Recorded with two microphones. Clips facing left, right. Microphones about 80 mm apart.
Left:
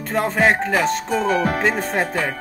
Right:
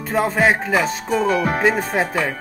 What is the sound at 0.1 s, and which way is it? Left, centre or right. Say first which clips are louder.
Speech: right 1 dB; centre.